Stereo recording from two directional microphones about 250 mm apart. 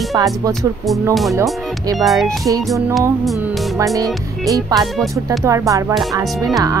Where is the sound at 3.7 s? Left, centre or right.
Centre.